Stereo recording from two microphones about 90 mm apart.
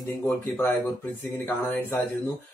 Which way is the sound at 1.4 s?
20° left (ahead or behind).